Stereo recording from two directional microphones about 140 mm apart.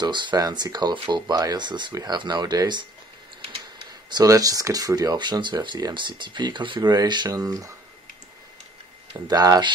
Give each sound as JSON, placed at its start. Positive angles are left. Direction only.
{"t": 0.0, "sound": "speech", "side_deg": -35}
{"t": 4.1, "sound": "speech", "side_deg": -25}
{"t": 9.3, "sound": "speech", "side_deg": -30}